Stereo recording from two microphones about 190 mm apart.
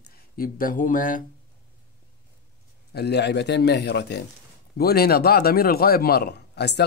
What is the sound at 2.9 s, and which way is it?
A man's voice, 60° left (ahead or behind).